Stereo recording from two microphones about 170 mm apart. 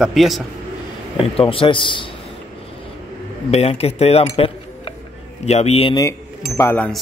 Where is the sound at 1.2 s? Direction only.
35° left (ahead or behind).